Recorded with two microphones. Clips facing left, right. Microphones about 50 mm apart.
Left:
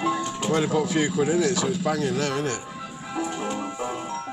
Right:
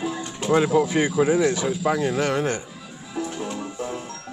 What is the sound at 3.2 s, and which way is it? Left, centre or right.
Music, left.